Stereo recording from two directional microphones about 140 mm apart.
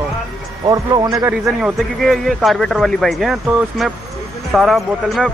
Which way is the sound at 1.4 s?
Centre (ahead or behind).